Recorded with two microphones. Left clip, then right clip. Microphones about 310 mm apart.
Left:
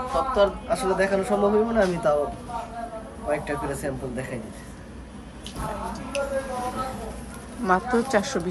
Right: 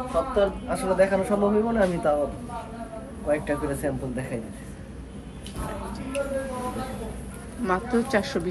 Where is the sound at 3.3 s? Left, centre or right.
Centre.